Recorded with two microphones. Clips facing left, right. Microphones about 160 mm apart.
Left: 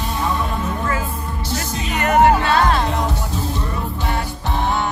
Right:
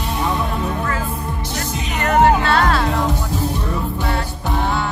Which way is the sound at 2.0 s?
15° left (ahead or behind).